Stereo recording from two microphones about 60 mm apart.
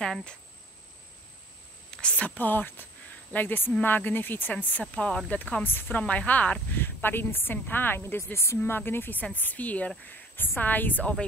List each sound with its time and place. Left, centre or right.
0.0 s speech: centre
1.9 s a woman's voice: centre
6.8 s a woman's voice: left
9.2 s a woman's voice: left